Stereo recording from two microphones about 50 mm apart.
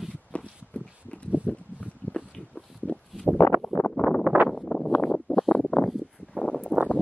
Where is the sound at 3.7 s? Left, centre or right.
Left.